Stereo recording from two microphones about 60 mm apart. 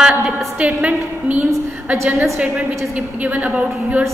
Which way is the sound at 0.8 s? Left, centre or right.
Right.